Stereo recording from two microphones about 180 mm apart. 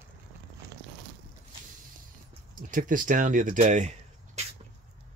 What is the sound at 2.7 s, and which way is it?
Speech, 50° right (ahead or behind).